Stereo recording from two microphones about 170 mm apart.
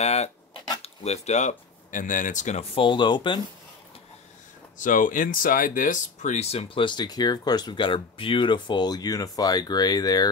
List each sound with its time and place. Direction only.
0.0 s a sound: 40° left (ahead or behind)
0.8 s speech: 40° left (ahead or behind)
4.7 s speech: 50° left (ahead or behind); by 10.3 s 25° left (ahead or behind)